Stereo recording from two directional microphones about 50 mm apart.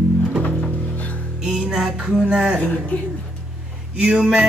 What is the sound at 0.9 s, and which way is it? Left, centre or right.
Music, left.